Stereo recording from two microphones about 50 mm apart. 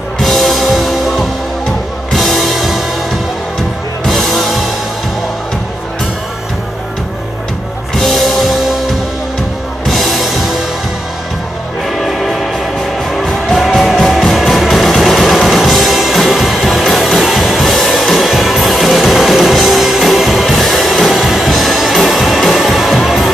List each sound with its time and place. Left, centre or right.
0.2 s music: centre
4.0 s music: centre
7.9 s music: centre
9.8 s music: centre
12.0 s train: centre
13.3 s music: centre